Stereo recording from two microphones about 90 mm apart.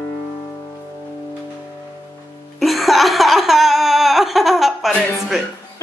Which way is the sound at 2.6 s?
Centre (ahead or behind).